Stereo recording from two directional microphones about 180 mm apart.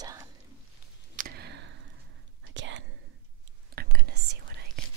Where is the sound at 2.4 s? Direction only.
90° right.